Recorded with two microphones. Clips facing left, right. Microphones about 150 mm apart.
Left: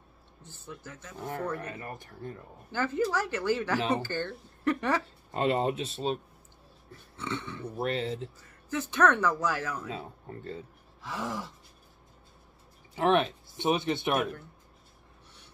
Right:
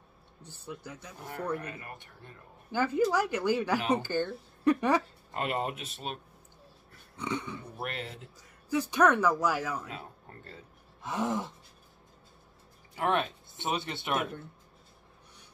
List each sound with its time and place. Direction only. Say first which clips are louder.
0.4 s speech: right 2 dB; 15° right (ahead or behind)
1.6 s speech: left 3 dB; 35° left (ahead or behind)
2.7 s speech: right 2 dB; 15° right (ahead or behind)
5.3 s speech: left 5 dB; 25° left (ahead or behind)
7.2 s speech: right 1 dB; 15° right (ahead or behind)
7.7 s speech: left 10 dB; 30° left (ahead or behind)
8.4 s speech: right 3 dB; 15° right (ahead or behind)
11.0 s a sound: right 4 dB; 20° right (ahead or behind)
12.9 s speech: left 4 dB; 20° left (ahead or behind)
14.1 s a sound: left 3 dB; 20° right (ahead or behind)